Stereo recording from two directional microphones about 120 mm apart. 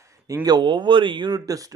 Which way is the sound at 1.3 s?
30° right (ahead or behind).